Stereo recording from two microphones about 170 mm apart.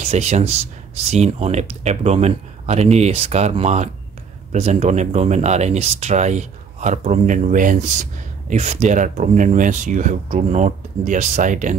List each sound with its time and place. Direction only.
0.0 s speech: 40° right (ahead or behind)